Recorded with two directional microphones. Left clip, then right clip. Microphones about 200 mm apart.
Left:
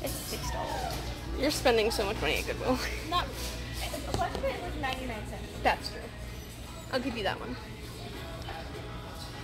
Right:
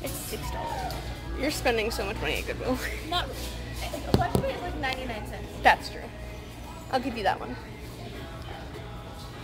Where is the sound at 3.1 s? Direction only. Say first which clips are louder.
Right 1 dB; 20° right (ahead or behind).